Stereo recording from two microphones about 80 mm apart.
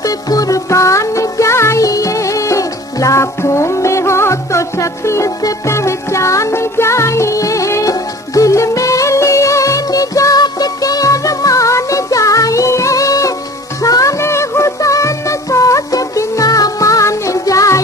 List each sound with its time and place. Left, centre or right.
0.0 s music: left